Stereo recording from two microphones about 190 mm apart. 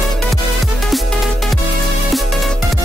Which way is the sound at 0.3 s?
Centre (ahead or behind).